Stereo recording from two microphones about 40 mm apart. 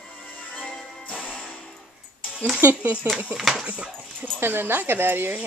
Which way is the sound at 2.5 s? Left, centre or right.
Right.